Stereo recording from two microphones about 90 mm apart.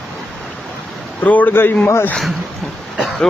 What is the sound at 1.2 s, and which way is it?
Speech, 20° left (ahead or behind).